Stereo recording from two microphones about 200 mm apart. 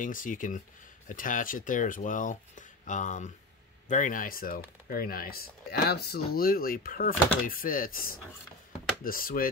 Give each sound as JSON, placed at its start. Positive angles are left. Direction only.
{"t": 0.0, "sound": "speech", "side_deg": 40}